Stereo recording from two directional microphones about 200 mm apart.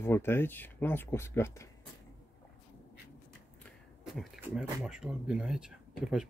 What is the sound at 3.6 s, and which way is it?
Speech, centre (ahead or behind).